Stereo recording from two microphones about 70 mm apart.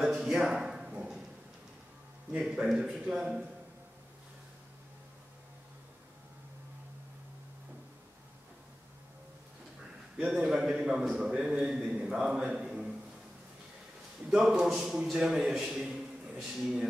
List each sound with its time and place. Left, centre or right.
0.2 s a sound: centre
2.3 s a man's voice: centre
10.1 s a man's voice: centre
14.3 s a man's voice: centre